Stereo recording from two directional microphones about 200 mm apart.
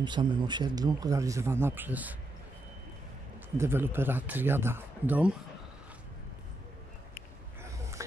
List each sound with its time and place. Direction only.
0.0 s speech: 25° right (ahead or behind)
3.5 s speech: 10° right (ahead or behind)